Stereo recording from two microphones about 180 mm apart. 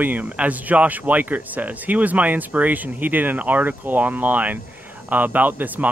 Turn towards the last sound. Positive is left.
turn(degrees=-10)  # may be behind; listen again after turning